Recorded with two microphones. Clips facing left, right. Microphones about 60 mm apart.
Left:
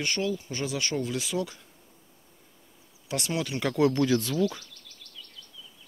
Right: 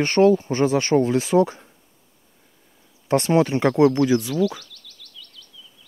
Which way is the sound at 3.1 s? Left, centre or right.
Right.